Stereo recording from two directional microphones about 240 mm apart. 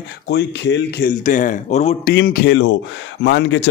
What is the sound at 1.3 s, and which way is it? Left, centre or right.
Speech, left.